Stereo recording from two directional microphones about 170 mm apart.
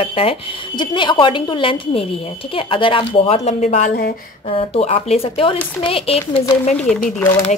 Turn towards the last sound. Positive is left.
turn(degrees=10)  # may be behind; listen again after turning